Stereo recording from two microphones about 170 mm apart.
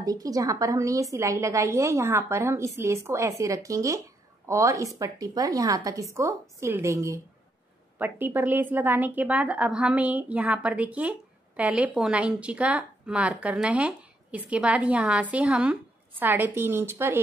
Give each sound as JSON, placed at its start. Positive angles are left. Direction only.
{"t": 0.0, "sound": "a woman's voice", "side_deg": -20}